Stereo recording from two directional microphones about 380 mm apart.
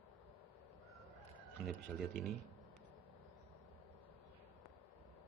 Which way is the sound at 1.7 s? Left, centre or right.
Centre.